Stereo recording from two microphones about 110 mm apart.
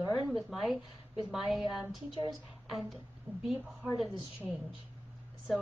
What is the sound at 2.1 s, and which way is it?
Speech, 35° right (ahead or behind).